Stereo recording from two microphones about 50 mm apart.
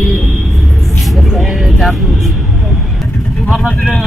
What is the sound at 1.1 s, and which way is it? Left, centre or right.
Vehicle, centre.